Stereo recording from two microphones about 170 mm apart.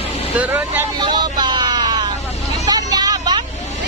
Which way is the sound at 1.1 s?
25° right (ahead or behind).